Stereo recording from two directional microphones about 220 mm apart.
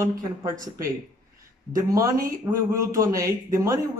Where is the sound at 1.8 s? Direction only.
15° right (ahead or behind).